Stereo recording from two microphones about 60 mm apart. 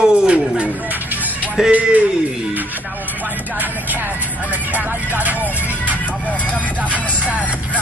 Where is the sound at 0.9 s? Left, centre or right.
Right.